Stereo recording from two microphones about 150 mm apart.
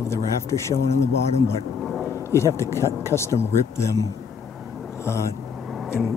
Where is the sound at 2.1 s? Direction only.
15° left (ahead or behind).